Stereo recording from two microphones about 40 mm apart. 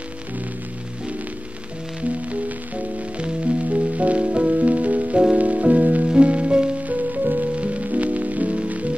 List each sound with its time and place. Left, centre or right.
2.0 s music: right
6.0 s music: right
6.9 s music: right